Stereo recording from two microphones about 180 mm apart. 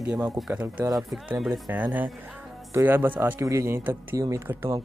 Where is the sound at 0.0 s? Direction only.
5° right (ahead or behind).